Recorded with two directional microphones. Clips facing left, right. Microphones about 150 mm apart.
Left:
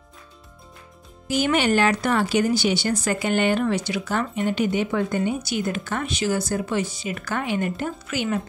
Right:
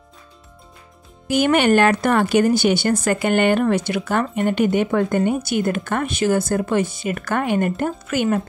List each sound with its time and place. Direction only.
1.2 s speech: 60° right (ahead or behind)